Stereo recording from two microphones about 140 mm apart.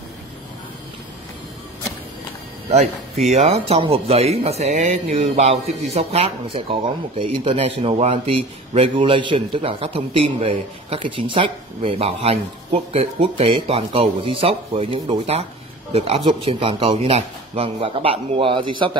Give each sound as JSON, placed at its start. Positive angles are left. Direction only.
{"t": 2.7, "sound": "speech", "side_deg": -55}